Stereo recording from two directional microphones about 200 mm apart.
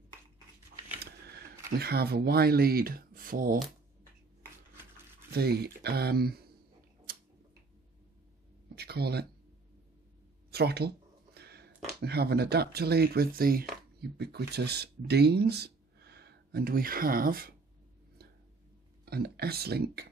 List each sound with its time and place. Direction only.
0.9 s speech: 50° right (ahead or behind)
5.3 s speech: 50° right (ahead or behind)
7.1 s a sound: 50° right (ahead or behind)
8.7 s a sound: 55° right (ahead or behind)
10.5 s speech: 55° right (ahead or behind)
19.0 s speech: 50° right (ahead or behind)